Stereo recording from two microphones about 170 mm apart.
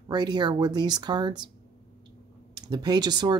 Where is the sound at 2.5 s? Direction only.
25° right (ahead or behind).